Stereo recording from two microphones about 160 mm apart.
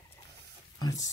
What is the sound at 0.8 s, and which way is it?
Speech, 20° left (ahead or behind).